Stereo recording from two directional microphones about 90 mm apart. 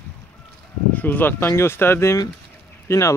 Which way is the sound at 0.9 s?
20° left (ahead or behind).